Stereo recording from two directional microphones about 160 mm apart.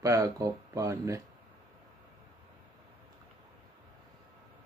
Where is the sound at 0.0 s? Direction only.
20° right (ahead or behind).